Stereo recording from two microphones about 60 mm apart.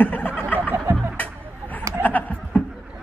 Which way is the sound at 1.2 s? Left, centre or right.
Left.